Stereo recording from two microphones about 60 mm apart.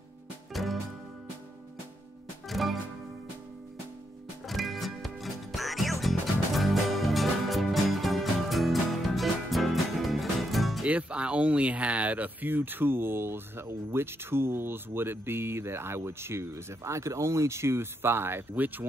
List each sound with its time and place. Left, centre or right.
0.5 s music: centre
2.4 s music: centre
4.5 s music: centre
10.9 s speech: right